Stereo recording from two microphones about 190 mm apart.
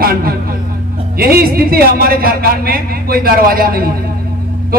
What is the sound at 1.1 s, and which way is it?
A man's voice, 50° right (ahead or behind).